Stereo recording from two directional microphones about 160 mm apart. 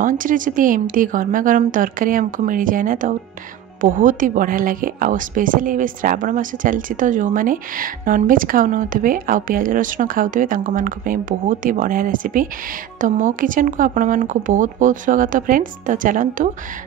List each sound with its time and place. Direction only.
0.0 s speech: 55° right (ahead or behind)